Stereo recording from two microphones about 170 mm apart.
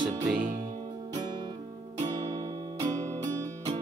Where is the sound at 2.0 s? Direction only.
20° right (ahead or behind).